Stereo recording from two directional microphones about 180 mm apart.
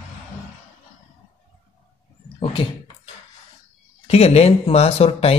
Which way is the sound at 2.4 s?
30° left (ahead or behind).